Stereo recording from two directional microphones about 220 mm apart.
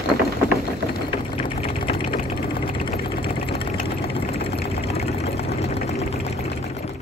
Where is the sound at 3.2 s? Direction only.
25° left (ahead or behind).